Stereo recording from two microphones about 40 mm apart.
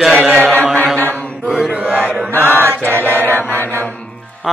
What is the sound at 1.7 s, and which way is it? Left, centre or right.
Chant, right.